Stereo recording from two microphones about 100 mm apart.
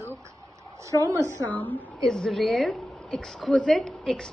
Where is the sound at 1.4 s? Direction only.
15° left (ahead or behind).